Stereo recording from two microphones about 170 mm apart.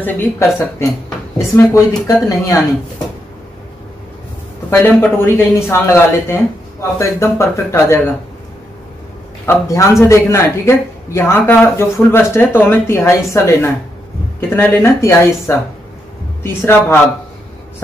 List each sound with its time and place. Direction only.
0.0 s speech: 15° left (ahead or behind)
4.6 s speech: 15° left (ahead or behind)
9.5 s speech: 15° left (ahead or behind)